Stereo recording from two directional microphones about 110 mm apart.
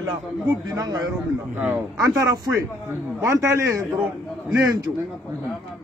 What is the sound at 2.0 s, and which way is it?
A man's voice, 30° right (ahead or behind).